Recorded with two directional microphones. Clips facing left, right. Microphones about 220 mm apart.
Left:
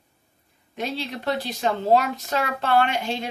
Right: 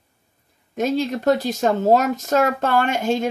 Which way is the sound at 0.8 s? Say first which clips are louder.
Right 9 dB; 45° right (ahead or behind).